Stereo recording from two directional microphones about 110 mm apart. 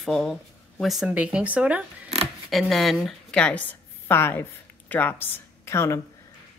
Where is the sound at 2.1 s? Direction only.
65° right (ahead or behind).